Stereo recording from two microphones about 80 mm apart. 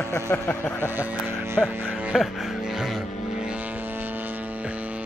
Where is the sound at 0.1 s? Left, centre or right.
Left.